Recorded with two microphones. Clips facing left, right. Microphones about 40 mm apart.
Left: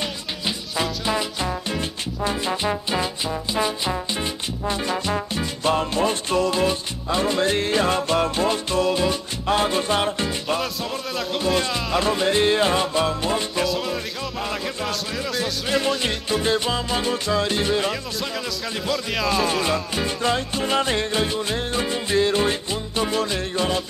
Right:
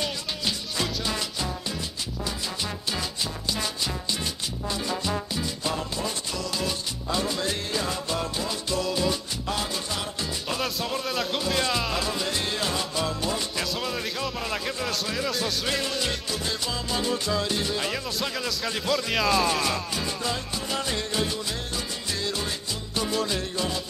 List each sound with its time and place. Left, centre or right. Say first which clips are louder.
1.7 s music: left 6 dB; left
4.6 s music: left 5 dB; left
10.6 s speech: left 1 dB; centre
12.0 s music: left 9 dB; left
13.7 s music: left 4 dB; centre
14.9 s speech: left 2 dB; centre
16.0 s music: left 6 dB; left
18.2 s speech: left 1 dB; centre
19.3 s music: left 3 dB; centre
20.2 s music: left 8 dB; left